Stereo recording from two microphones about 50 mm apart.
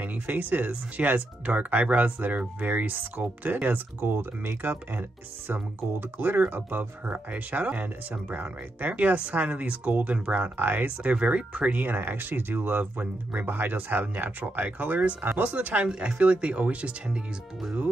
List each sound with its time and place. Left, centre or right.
0.0 s speech: right
10.4 s speech: right
11.8 s speech: right
13.0 s speech: right
13.5 s speech: right